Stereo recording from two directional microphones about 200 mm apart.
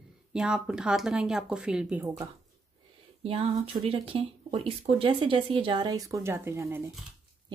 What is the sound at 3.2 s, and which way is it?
Speech, 30° right (ahead or behind).